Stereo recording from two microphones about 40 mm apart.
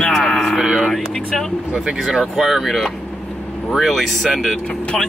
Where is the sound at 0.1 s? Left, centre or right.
Centre.